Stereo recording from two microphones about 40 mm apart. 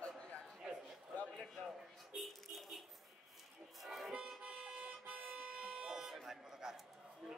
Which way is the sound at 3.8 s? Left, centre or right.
Centre.